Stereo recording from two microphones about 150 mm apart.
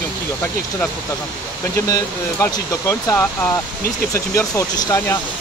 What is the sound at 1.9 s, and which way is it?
Speech, 20° left (ahead or behind).